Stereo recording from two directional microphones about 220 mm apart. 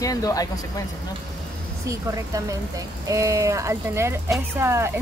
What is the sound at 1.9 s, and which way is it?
Speech, 15° right (ahead or behind).